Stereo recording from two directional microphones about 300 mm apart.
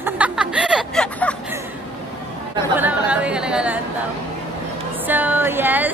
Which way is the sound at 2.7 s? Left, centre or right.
Centre.